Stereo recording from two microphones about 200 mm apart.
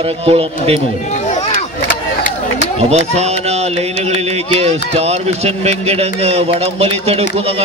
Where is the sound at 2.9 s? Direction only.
35° right (ahead or behind).